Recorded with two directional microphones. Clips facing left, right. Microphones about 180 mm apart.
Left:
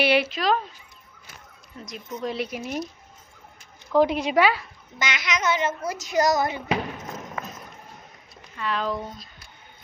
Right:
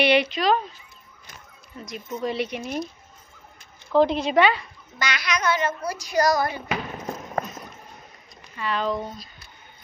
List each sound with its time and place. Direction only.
0.0 s speech: 5° left (ahead or behind)
1.8 s speech: 5° right (ahead or behind)
3.9 s speech: 10° left (ahead or behind)
4.9 s speech: 20° left (ahead or behind)
8.5 s speech: centre (ahead or behind)